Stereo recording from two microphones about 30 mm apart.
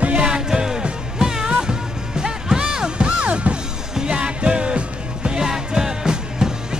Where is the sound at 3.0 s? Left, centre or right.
Right.